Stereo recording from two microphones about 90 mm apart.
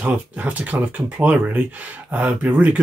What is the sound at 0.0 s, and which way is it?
Speech, 15° right (ahead or behind).